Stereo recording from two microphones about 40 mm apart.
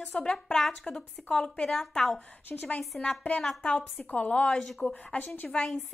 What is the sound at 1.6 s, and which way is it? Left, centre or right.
A woman's voice, centre.